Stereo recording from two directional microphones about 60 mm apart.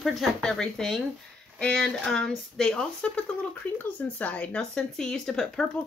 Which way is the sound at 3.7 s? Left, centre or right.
Left.